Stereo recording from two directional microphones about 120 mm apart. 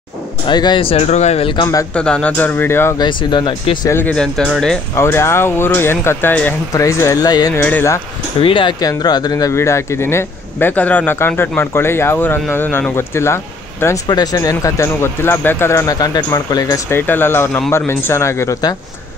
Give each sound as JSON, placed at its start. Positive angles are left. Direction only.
{"t": 0.5, "sound": "speech", "side_deg": 40}
{"t": 1.0, "sound": "speech", "side_deg": 70}
{"t": 1.5, "sound": "speech", "side_deg": 35}
{"t": 2.0, "sound": "speech", "side_deg": 10}
{"t": 3.0, "sound": "speech", "side_deg": 40}
{"t": 4.1, "sound": "speech", "side_deg": 10}
{"t": 4.9, "sound": "speech", "side_deg": 20}
{"t": 6.7, "sound": "speech", "side_deg": 25}
{"t": 7.5, "sound": "speech", "side_deg": 15}
{"t": 8.4, "sound": "speech", "side_deg": 45}
{"t": 8.7, "sound": "speech", "side_deg": 35}
{"t": 14.0, "sound": "speech", "side_deg": 35}
{"t": 16.9, "sound": "speech", "side_deg": 15}